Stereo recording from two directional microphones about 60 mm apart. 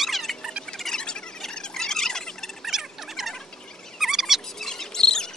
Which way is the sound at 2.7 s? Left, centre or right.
Centre.